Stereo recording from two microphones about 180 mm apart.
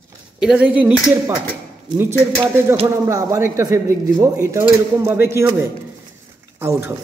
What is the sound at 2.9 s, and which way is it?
A man's voice, 15° right (ahead or behind).